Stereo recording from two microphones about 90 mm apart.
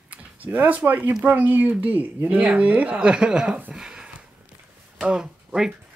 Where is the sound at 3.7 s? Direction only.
5° right (ahead or behind).